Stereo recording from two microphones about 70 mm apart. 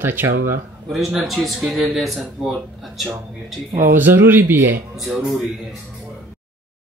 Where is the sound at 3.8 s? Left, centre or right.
Right.